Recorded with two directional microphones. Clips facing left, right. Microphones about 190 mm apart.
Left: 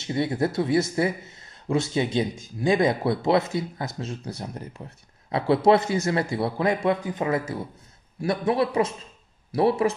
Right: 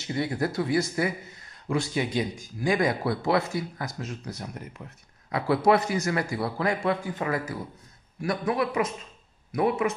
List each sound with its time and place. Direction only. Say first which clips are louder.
0.0 s a man's voice: left 3 dB; 25° left (ahead or behind)